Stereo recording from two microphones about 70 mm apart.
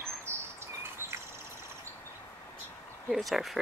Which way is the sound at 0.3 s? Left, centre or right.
Right.